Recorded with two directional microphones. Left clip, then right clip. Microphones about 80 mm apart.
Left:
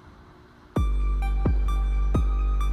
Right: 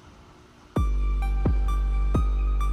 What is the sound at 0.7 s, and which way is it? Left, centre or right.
Music, centre.